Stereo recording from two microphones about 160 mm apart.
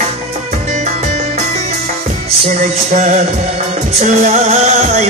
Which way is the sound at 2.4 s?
50° right (ahead or behind).